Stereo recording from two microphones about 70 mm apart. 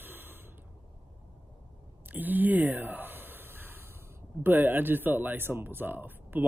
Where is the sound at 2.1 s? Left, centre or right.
Right.